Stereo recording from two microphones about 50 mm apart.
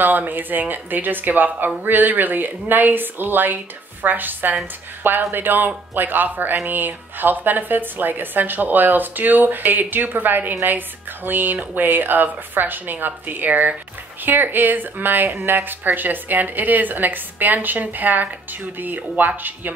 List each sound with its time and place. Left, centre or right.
0.0 s speech: right